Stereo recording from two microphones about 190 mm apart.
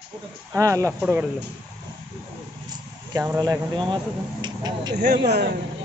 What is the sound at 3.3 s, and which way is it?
Speech, 20° right (ahead or behind).